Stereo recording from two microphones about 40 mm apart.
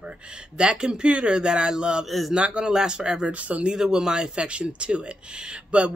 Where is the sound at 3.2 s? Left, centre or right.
Right.